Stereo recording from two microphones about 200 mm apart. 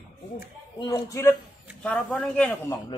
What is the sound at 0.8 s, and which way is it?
Speech, 20° left (ahead or behind).